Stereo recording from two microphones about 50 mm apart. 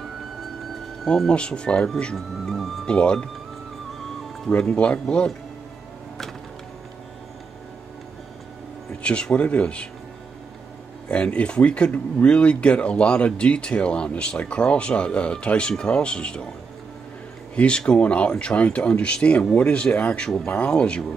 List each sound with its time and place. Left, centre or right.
1.0 s speech: centre
2.1 s music: centre
2.8 s speech: left
4.5 s speech: left
9.0 s speech: left
11.1 s speech: left
17.6 s speech: left
20.2 s speech: centre
20.5 s speech: left